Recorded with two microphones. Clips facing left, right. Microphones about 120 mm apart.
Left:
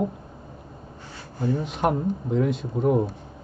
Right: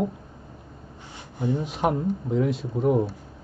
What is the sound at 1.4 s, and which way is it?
Speech, 15° right (ahead or behind).